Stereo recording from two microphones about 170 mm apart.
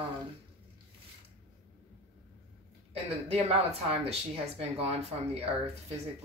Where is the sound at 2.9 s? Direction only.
35° right (ahead or behind).